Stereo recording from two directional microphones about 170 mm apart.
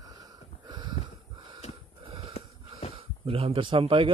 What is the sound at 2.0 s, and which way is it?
Wheeze, 35° right (ahead or behind).